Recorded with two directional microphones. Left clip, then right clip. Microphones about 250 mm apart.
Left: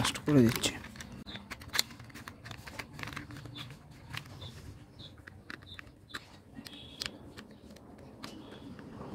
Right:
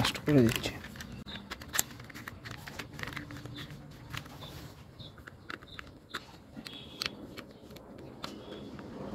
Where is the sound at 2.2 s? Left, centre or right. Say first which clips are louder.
Right 2 dB; centre.